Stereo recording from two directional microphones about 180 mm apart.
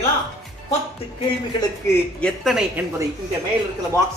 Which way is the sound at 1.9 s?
5° left (ahead or behind).